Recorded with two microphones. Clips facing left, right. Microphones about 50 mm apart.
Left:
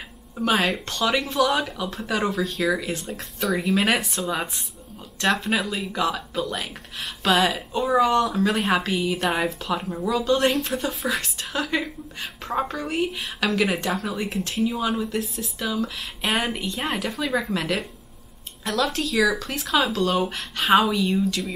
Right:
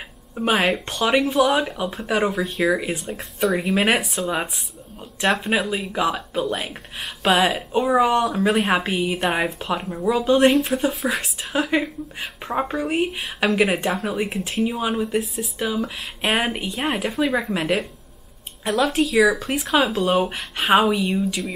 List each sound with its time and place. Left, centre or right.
0.5 s a woman's voice: centre
4.0 s a woman's voice: centre; by 9.2 s right
9.2 s a woman's voice: centre
14.6 s speech: right
14.9 s a woman's voice: centre
20.3 s a woman's voice: centre